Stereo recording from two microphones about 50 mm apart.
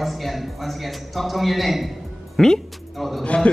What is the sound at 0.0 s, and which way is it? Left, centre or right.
A man's voice, centre.